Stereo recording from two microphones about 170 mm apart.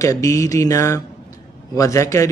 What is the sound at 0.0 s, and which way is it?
Speech, 20° left (ahead or behind).